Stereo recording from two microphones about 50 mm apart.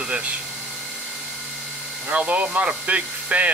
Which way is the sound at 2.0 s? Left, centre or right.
Right.